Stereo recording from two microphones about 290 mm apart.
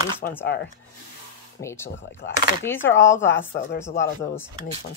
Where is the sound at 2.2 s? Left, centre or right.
Left.